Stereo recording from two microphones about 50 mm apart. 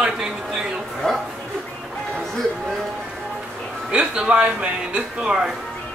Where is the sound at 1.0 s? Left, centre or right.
Centre.